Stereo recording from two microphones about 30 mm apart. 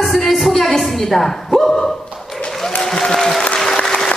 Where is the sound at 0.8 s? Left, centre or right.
Centre.